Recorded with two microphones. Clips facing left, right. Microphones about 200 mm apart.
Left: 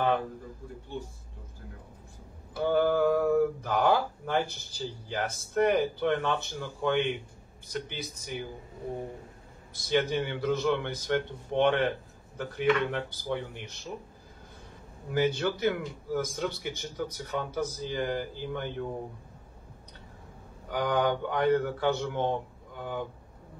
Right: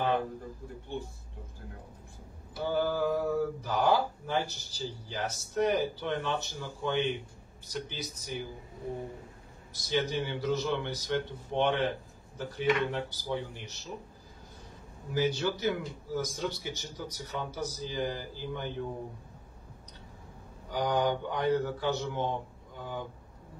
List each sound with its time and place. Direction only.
2.5 s speech: 55° left (ahead or behind)
9.8 s speech: 55° left (ahead or behind)
15.1 s speech: 55° left (ahead or behind)
20.7 s speech: 55° left (ahead or behind)